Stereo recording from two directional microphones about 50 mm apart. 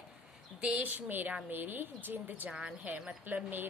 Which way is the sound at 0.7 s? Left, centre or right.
Right.